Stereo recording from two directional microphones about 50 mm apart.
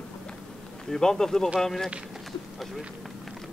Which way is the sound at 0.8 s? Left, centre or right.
Centre.